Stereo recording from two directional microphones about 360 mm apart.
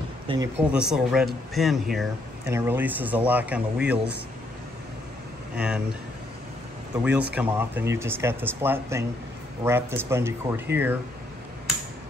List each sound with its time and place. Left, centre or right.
0.3 s speech: centre
5.5 s speech: centre
7.3 s speech: centre